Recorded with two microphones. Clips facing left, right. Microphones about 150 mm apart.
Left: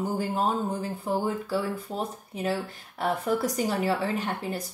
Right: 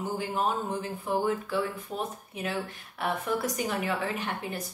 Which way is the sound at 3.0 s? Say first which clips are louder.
Left 3 dB; 35° left (ahead or behind).